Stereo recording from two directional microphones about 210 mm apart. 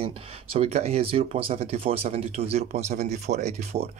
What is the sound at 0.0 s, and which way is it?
A man's voice, 30° right (ahead or behind).